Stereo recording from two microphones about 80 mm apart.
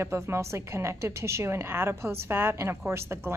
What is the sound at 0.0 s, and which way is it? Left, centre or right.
A woman's voice, right.